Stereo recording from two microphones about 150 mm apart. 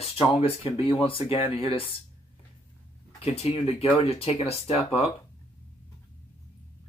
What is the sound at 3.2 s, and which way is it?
Speech, 45° left (ahead or behind).